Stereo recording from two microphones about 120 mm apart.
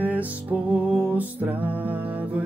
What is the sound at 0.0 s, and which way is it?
Music, 15° right (ahead or behind).